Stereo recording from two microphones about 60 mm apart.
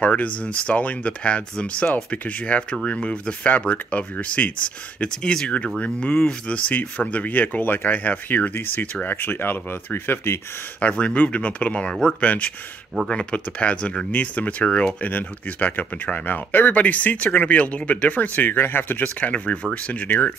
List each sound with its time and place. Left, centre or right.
0.0 s speech: left
10.8 s speech: centre
11.9 s speech: centre
12.2 s speech: left